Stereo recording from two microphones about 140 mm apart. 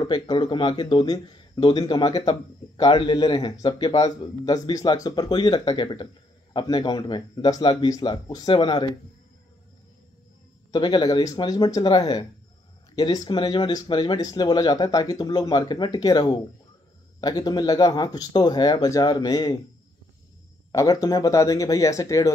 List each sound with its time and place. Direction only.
0.0 s a man's voice: 30° left (ahead or behind)
10.7 s speech: 30° left (ahead or behind)
20.7 s speech: 25° left (ahead or behind)